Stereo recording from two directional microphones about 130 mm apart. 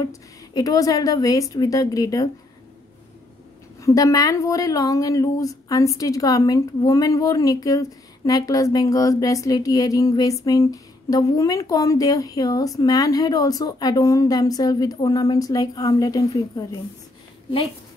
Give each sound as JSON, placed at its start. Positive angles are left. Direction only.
{"t": 0.0, "sound": "speech", "side_deg": 30}
{"t": 3.8, "sound": "speech", "side_deg": 25}